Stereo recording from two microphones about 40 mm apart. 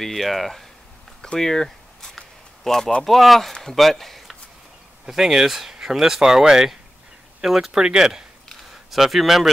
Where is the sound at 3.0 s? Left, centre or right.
Centre.